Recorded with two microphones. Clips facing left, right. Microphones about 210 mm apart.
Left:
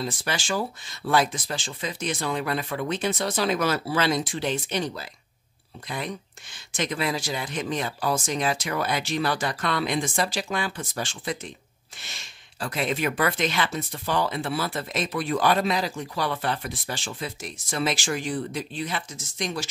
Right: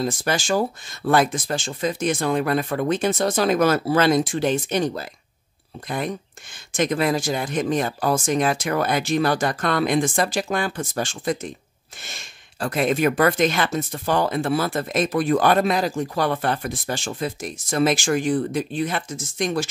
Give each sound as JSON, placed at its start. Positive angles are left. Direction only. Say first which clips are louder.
{"t": 0.0, "sound": "speech", "louder": "right 6 dB", "side_deg": -45}